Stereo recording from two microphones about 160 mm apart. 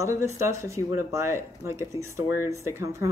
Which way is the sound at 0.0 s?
20° right (ahead or behind).